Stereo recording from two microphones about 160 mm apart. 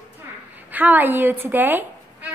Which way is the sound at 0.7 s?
10° right (ahead or behind).